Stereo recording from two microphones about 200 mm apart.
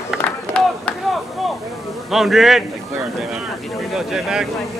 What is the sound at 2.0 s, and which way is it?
Speech, centre (ahead or behind).